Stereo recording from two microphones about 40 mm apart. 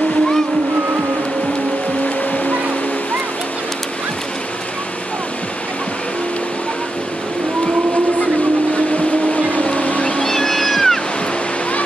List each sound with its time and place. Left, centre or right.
8.7 s vehicle: left
10.2 s cat: centre